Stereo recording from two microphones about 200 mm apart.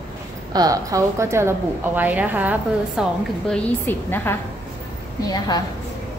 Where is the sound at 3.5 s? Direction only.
5° left (ahead or behind).